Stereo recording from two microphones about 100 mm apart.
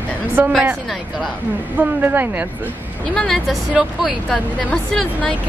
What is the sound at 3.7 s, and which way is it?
Speech, 10° right (ahead or behind).